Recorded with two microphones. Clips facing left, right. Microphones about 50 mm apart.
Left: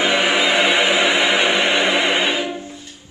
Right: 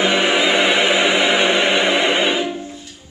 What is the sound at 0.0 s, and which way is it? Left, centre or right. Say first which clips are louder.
Music: right 1 dB; centre.